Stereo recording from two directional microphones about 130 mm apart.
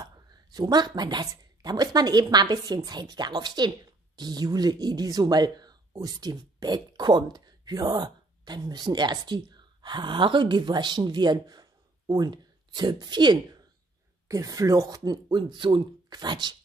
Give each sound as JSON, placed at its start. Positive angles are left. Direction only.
{"t": 0.0, "sound": "speech", "side_deg": -30}